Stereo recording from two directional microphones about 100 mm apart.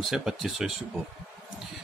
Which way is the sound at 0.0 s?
5° right (ahead or behind).